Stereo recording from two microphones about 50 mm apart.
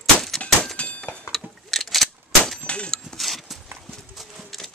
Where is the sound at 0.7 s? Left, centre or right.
Left.